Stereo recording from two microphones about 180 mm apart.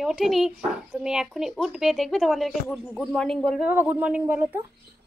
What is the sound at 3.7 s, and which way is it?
Speech, 10° right (ahead or behind).